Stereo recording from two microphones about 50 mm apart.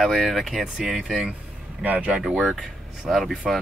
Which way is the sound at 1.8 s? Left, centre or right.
Right.